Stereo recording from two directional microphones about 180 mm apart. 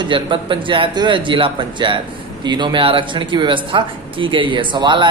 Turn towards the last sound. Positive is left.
turn(degrees=-25)  # may be behind; listen again after turning